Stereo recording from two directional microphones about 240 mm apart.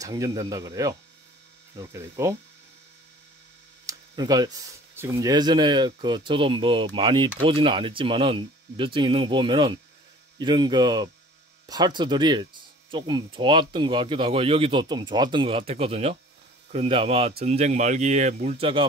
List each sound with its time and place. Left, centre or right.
0.0 s speech: centre
3.8 s speech: centre